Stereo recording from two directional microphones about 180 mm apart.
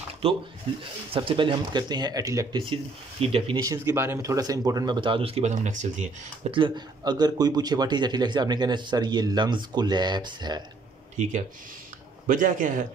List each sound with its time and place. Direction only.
0.2 s speech: 30° right (ahead or behind)
3.6 s speech: 15° right (ahead or behind); by 6.0 s 40° right (ahead or behind)
6.5 s speech: 25° right (ahead or behind)
11.2 s a man's voice: 40° right (ahead or behind)